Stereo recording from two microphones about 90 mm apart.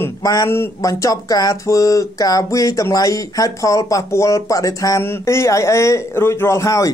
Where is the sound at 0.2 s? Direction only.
45° left (ahead or behind).